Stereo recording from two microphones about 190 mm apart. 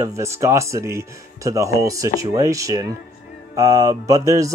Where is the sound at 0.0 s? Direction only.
15° right (ahead or behind).